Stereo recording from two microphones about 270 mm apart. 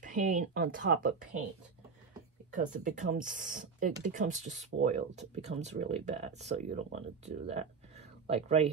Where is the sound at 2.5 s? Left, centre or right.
Right.